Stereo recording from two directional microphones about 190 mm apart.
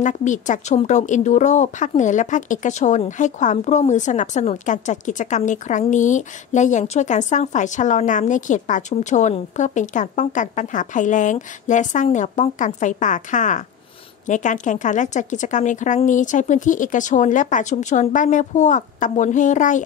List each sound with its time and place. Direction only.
0.0 s speech: 40° left (ahead or behind)